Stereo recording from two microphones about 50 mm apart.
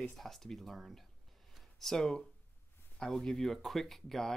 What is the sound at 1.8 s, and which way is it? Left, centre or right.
Speech, centre.